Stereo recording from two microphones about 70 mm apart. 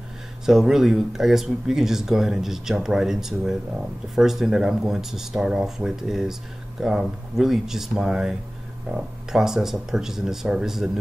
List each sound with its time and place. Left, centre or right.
0.5 s speech: centre